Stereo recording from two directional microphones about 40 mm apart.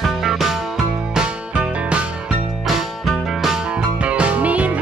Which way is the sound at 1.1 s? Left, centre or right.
Right.